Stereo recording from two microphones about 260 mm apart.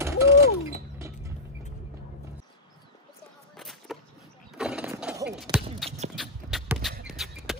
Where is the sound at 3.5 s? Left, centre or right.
Centre.